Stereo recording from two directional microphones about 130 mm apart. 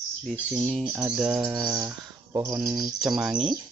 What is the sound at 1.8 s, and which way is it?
Speech, 25° right (ahead or behind).